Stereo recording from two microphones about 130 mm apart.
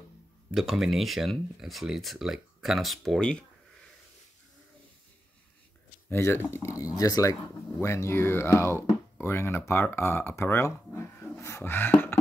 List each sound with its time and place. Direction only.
0.5 s speech: 5° right (ahead or behind)
6.0 s speech: 20° left (ahead or behind)
11.3 s a sound: 20° left (ahead or behind)